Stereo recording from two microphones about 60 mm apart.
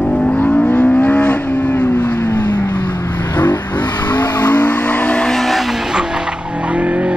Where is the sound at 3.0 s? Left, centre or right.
Left.